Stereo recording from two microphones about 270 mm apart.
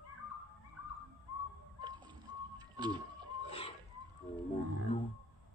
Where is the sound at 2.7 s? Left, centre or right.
Centre.